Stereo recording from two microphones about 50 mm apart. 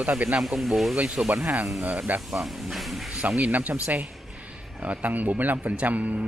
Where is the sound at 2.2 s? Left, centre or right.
Centre.